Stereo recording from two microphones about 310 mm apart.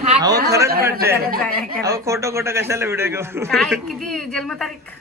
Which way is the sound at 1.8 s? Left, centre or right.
Centre.